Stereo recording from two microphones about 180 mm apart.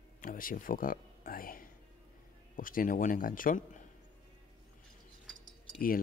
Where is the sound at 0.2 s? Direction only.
50° left (ahead or behind).